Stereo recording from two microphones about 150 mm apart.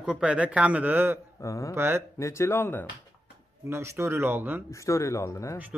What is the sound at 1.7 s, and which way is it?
Speech, 15° right (ahead or behind).